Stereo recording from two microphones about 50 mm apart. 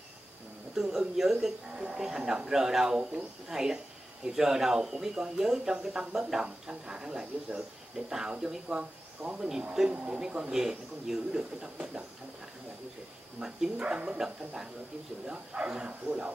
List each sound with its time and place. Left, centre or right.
0.7 s speech: centre
1.7 s speech: centre
13.7 s speech: centre